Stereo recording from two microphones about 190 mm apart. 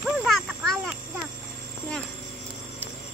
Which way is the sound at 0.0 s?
Centre (ahead or behind).